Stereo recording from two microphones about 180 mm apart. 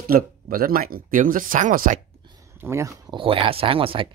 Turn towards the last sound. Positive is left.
turn(degrees=-30)  # may be behind; listen again after turning